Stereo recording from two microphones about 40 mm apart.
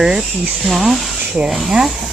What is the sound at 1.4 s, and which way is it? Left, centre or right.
Speech, right.